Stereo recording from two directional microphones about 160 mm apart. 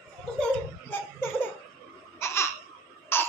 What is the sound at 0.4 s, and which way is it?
Laughter, 15° left (ahead or behind).